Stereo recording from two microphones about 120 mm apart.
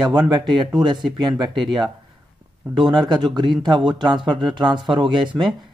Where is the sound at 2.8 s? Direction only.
40° right (ahead or behind).